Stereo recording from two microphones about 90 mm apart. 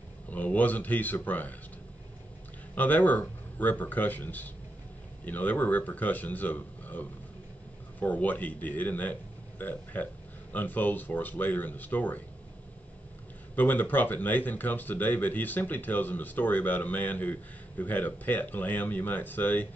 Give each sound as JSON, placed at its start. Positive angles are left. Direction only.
{"t": 0.3, "sound": "speech", "side_deg": 20}
{"t": 2.7, "sound": "a man's voice", "side_deg": 20}
{"t": 13.6, "sound": "speech", "side_deg": 20}